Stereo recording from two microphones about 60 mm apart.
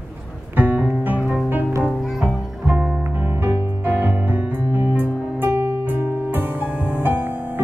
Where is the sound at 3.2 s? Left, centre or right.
Right.